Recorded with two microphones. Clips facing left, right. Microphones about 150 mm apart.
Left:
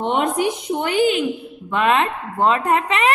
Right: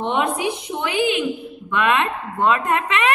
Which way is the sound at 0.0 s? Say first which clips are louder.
Left 2 dB; 45° left (ahead or behind).